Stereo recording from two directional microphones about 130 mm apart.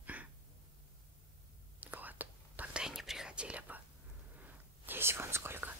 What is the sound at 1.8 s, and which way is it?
Whispering, 15° right (ahead or behind).